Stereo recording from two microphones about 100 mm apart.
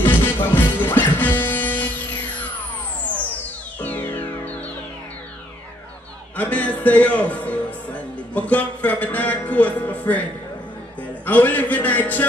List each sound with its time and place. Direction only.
0.0 s music: 20° left (ahead or behind)
3.8 s music: 15° left (ahead or behind)
6.3 s music: 15° left (ahead or behind)
11.2 s a man's voice: 15° left (ahead or behind)